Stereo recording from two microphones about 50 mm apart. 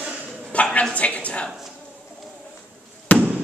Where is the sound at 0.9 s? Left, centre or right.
Left.